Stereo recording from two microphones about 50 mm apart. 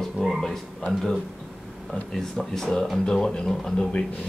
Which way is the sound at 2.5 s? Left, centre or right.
Centre.